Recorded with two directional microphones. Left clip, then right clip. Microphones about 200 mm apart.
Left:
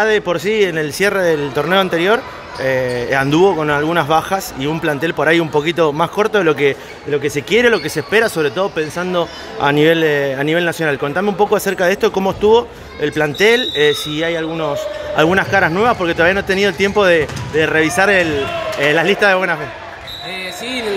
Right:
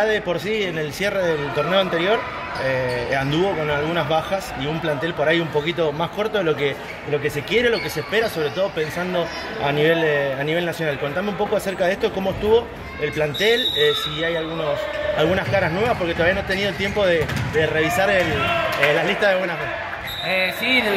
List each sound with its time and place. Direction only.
0.0 s speech: 55° left (ahead or behind)
20.3 s speech: 5° left (ahead or behind)